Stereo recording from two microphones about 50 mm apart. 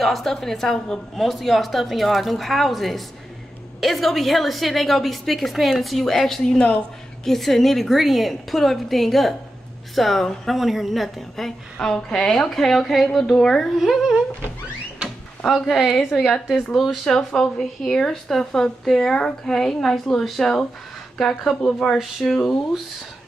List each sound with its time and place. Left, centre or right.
0.0 s a woman's voice: centre
15.5 s speech: centre
16.1 s a woman's voice: centre
17.3 s speech: centre